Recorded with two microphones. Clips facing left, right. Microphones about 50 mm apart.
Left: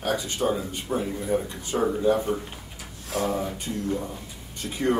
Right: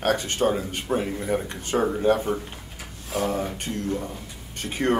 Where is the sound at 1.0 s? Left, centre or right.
Right.